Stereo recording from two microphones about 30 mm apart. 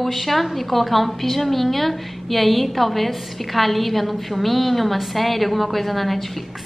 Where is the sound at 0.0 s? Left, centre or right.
Centre.